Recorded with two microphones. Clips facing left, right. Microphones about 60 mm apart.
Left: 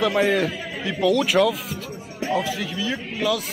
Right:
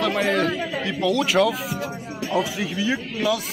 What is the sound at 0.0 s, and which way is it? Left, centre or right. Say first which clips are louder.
A man's voice: left 1 dB; centre.